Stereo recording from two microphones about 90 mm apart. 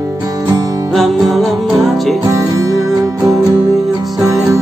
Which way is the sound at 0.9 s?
Centre (ahead or behind).